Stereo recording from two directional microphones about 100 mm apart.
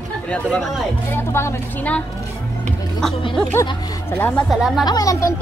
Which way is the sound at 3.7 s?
40° left (ahead or behind).